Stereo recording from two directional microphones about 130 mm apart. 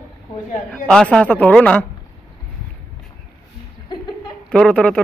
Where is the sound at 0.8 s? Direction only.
5° left (ahead or behind).